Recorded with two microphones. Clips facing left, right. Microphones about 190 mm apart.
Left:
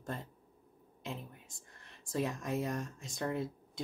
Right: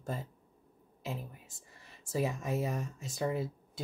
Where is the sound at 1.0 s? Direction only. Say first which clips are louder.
Right 3 dB; 5° right (ahead or behind).